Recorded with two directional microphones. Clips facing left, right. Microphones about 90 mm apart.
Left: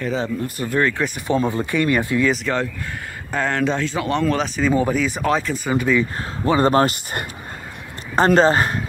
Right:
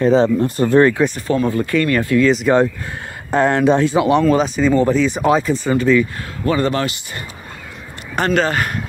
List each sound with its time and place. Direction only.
0.0 s speech: 30° right (ahead or behind)
1.0 s speech: 15° left (ahead or behind)
2.5 s speech: 25° right (ahead or behind)
4.4 s speech: centre (ahead or behind)
5.2 s speech: 5° right (ahead or behind)
5.6 s speech: 10° left (ahead or behind)
5.9 s speech: 20° left (ahead or behind)
6.6 s speech: 40° left (ahead or behind)
8.4 s speech: 30° left (ahead or behind)